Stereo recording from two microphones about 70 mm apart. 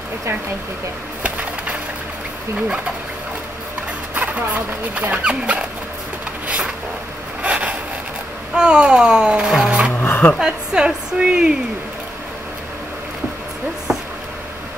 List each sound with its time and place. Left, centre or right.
4.1 s speech: right
7.4 s zipper: centre
8.5 s music: centre
9.9 s music: left
10.4 s a woman's voice: centre